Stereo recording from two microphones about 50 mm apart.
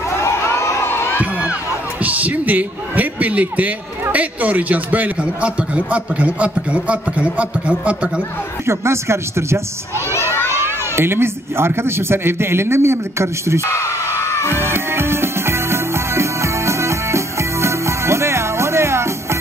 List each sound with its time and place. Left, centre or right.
0.1 s crowd: left
0.8 s crowd: left
1.2 s crowd: right
2.0 s a man's voice: right
8.6 s speech: right
13.7 s music: left
14.5 s music: right